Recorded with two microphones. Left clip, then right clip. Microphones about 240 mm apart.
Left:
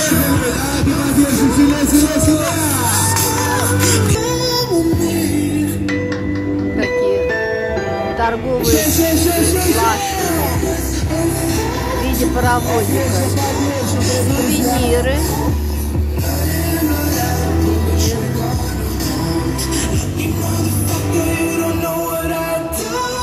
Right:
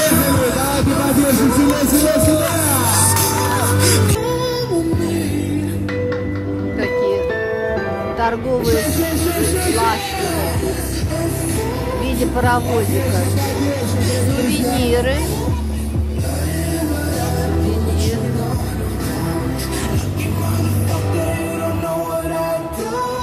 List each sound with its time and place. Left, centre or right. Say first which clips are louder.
0.0 s music: right 1 dB; centre
4.6 s music: left 3 dB; left
8.6 s music: left 3 dB; left
12.4 s music: even; centre
14.5 s music: left 1 dB; centre